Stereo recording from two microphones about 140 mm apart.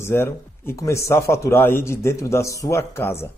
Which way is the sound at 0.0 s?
15° left (ahead or behind).